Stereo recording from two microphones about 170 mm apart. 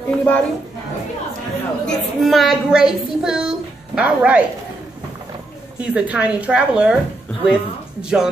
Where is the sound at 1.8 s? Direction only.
Centre (ahead or behind).